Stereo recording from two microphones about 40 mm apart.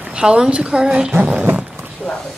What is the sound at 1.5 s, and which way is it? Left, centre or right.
Roaring cats, right.